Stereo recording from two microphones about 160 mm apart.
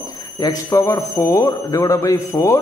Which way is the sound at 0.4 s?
20° left (ahead or behind).